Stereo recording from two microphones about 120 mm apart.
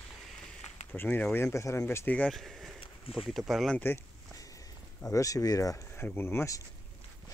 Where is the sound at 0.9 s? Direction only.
15° left (ahead or behind).